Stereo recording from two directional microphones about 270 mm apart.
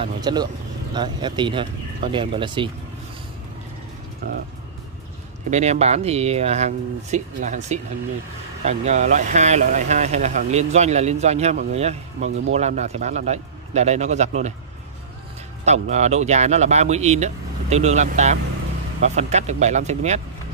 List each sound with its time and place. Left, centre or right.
0.0 s speech: centre
5.5 s speech: right
15.6 s speech: right